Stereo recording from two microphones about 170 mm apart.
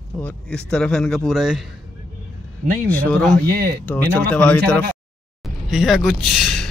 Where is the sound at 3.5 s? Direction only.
60° right (ahead or behind).